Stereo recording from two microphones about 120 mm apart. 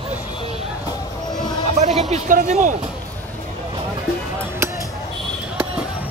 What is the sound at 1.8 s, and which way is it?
Speech, 65° right (ahead or behind).